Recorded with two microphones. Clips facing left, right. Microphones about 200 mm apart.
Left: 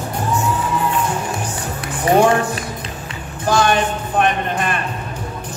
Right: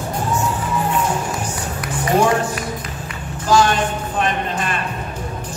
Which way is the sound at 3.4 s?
60° left (ahead or behind).